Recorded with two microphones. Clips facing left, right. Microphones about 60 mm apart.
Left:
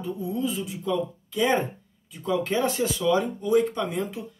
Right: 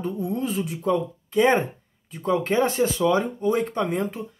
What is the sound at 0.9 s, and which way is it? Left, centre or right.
Speech, right.